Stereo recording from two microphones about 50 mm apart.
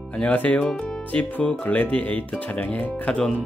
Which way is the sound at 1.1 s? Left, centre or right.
Left.